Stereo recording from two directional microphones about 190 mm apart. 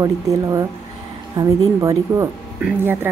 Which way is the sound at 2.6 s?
5° right (ahead or behind).